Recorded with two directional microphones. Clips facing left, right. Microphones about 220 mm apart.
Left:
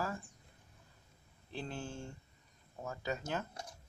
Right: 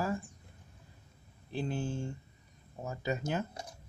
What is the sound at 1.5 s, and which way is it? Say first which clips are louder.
Speech: right 7 dB; 10° right (ahead or behind).